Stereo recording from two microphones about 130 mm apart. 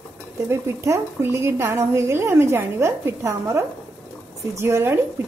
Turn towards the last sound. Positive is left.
turn(degrees=-20)  # may be behind; listen again after turning